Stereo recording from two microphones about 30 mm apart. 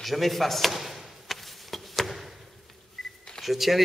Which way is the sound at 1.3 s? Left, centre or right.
Centre.